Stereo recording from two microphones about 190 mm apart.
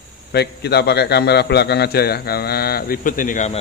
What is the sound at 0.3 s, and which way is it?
A man's voice, 60° left (ahead or behind).